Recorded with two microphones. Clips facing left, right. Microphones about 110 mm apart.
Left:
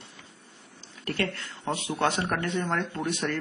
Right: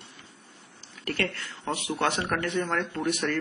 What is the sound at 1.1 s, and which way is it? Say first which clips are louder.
Speech: even; 25° left (ahead or behind).